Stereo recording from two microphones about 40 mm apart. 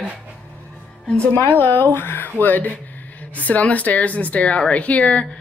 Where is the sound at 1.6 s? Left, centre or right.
Left.